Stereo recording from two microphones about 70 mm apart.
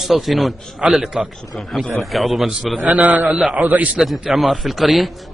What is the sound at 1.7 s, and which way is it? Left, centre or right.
Speech, centre.